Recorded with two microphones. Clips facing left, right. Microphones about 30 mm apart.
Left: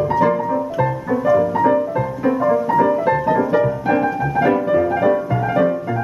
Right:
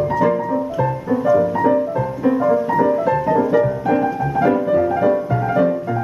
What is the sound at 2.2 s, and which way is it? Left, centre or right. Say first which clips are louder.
Music: right 1 dB; left.